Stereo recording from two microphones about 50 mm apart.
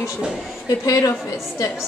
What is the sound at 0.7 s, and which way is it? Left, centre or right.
Speech, left.